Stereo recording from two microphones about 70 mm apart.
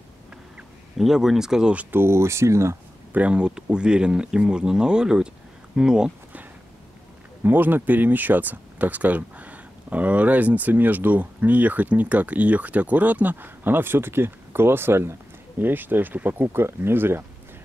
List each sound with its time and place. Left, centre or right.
0.9 s speech: centre
1.9 s speech: right
3.1 s speech: centre
7.4 s speech: right